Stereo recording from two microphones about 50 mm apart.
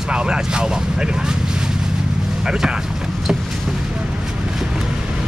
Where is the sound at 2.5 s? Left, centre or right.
Centre.